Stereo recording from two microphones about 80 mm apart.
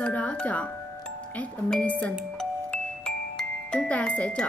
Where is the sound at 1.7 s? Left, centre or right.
Centre.